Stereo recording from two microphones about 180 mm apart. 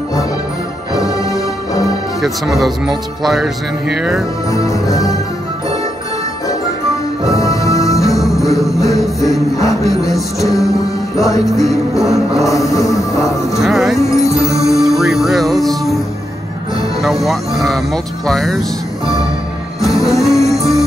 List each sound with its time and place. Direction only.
2.2 s speech: centre (ahead or behind)
4.5 s music: 20° left (ahead or behind)
7.3 s music: 20° left (ahead or behind)
8.0 s music: centre (ahead or behind)
8.9 s speech: centre (ahead or behind)
11.4 s speech: centre (ahead or behind)
12.6 s music: 20° left (ahead or behind)
13.6 s music: centre (ahead or behind)
14.4 s music: 15° left (ahead or behind)
14.8 s music: centre (ahead or behind)
17.0 s music: centre (ahead or behind)
18.2 s speech: centre (ahead or behind)
19.8 s music: centre (ahead or behind)